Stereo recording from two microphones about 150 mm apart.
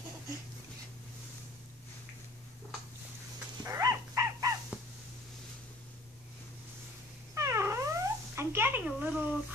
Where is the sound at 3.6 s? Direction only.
25° right (ahead or behind).